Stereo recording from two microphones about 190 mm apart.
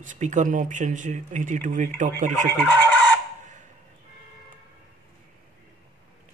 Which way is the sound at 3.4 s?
40° right (ahead or behind).